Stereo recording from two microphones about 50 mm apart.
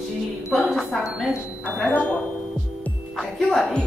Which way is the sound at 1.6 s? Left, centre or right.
Left.